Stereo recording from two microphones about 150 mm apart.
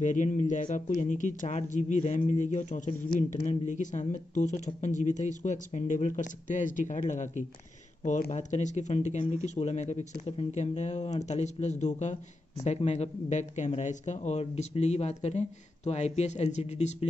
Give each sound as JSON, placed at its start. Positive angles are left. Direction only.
{"t": 0.0, "sound": "speech", "side_deg": 55}